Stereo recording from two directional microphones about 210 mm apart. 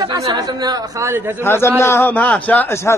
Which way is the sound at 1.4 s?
10° left (ahead or behind).